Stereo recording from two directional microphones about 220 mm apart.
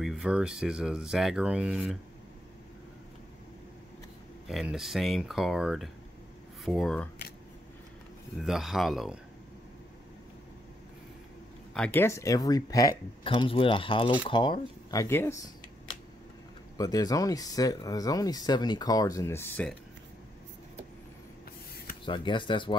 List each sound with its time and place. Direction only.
0.0 s speech: centre (ahead or behind)
4.5 s speech: centre (ahead or behind)
8.4 s speech: centre (ahead or behind)
11.7 s speech: 5° left (ahead or behind)
16.7 s speech: 15° left (ahead or behind)
22.0 s speech: 20° left (ahead or behind)